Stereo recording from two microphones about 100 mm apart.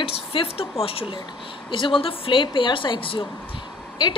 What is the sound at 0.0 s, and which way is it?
A woman's voice, 70° left (ahead or behind).